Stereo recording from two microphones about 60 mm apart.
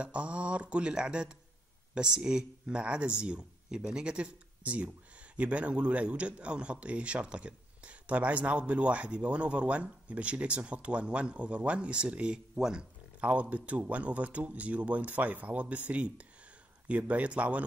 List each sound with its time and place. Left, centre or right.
0.0 s speech: right
13.2 s speech: right